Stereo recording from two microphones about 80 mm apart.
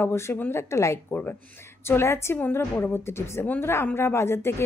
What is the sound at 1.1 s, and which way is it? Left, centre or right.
Speech, left.